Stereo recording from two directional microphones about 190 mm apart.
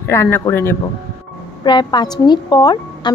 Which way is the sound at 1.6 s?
25° left (ahead or behind).